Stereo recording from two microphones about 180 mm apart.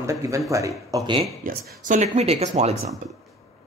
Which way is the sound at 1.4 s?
45° right (ahead or behind).